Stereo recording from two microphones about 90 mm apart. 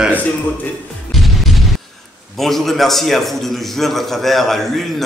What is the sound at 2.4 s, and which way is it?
A man's voice, 5° left (ahead or behind).